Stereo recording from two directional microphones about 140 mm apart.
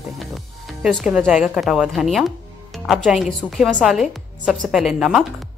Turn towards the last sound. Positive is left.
turn(degrees=-5)  # may be behind; listen again after turning